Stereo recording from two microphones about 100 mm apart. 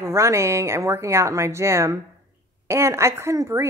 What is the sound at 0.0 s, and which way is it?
A woman's voice, 30° right (ahead or behind).